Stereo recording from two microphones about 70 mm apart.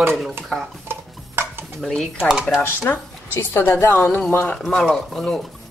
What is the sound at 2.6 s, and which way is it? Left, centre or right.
A woman's voice, left.